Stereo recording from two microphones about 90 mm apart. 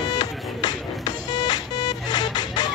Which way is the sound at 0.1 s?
50° left (ahead or behind).